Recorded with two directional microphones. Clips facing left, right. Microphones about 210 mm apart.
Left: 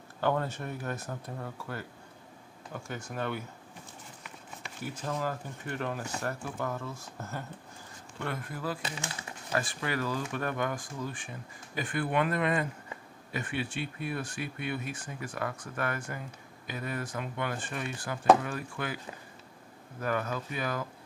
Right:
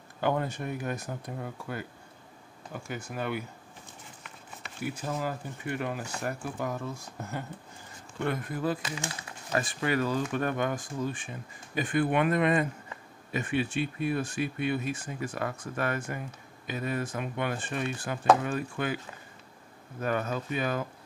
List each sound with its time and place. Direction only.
0.2 s speech: 15° right (ahead or behind)
4.8 s speech: 10° right (ahead or behind)
20.0 s speech: 25° right (ahead or behind)